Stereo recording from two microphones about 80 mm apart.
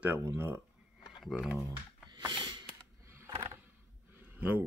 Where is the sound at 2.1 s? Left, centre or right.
Right.